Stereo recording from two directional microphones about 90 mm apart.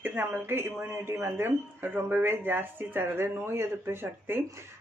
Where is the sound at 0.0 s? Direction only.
25° right (ahead or behind).